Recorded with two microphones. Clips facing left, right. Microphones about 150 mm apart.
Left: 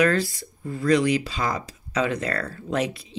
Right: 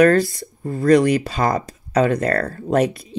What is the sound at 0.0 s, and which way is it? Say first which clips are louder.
A woman's voice: right 7 dB; 50° right (ahead or behind).